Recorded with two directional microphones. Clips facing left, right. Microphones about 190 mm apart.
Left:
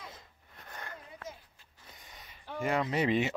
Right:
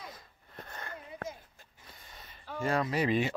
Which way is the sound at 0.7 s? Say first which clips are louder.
Even; 15° left (ahead or behind).